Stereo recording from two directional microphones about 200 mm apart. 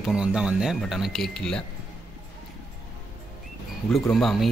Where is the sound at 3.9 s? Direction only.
Centre (ahead or behind).